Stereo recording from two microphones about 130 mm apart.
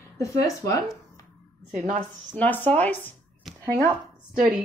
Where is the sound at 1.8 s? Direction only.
75° right (ahead or behind).